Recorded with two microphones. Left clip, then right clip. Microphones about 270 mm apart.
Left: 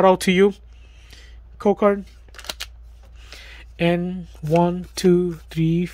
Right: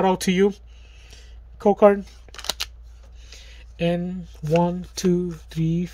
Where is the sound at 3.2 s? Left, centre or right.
Centre.